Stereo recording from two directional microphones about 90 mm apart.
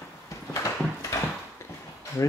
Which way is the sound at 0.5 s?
40° left (ahead or behind).